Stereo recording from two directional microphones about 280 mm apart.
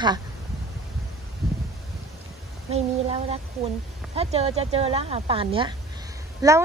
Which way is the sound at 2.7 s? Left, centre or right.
Right.